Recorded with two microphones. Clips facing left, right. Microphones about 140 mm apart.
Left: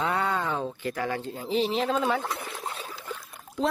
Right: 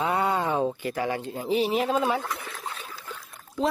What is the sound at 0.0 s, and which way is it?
Speech, 10° right (ahead or behind).